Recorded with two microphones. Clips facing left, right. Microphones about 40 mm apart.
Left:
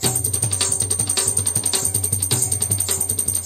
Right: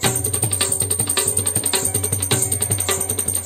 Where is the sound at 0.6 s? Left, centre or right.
Right.